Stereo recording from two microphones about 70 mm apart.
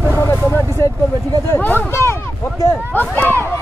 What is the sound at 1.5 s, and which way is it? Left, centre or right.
Speech, left.